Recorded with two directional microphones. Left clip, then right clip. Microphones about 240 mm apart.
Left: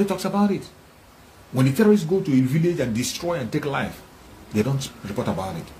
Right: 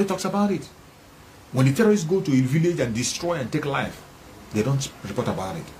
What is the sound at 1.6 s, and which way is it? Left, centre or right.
Speech, centre.